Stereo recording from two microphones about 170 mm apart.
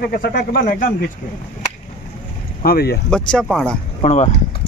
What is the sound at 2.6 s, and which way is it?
Speech, 65° left (ahead or behind).